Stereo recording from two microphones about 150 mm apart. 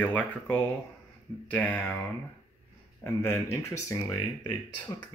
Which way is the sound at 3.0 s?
15° left (ahead or behind).